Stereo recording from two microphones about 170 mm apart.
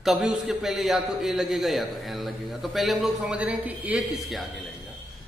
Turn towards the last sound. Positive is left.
turn(degrees=-5)  # may be behind; listen again after turning